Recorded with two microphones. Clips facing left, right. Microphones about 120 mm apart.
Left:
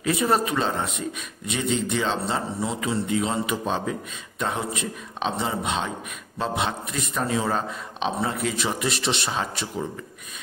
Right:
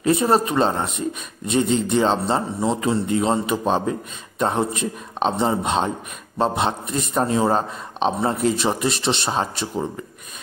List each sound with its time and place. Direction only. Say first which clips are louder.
0.0 s a man's voice: right 4 dB; 30° right (ahead or behind)